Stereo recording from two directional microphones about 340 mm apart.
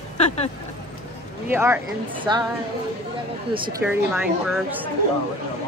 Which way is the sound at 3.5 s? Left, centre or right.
Centre.